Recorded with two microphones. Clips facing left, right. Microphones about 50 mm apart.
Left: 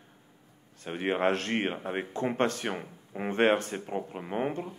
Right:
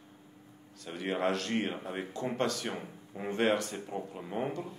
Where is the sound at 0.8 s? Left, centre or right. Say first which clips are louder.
Left 4 dB; left.